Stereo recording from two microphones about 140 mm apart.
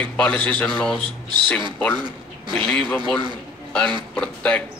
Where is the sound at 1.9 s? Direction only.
30° right (ahead or behind).